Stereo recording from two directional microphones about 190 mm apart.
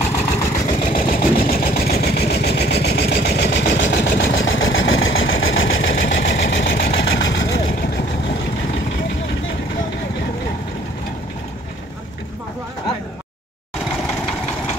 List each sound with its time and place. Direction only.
0.4 s vehicle: 25° left (ahead or behind)
1.0 s sewing machine: 50° left (ahead or behind)
1.4 s vehicle: 50° left (ahead or behind); by 5.9 s 80° left
6.1 s vehicle: 70° left (ahead or behind)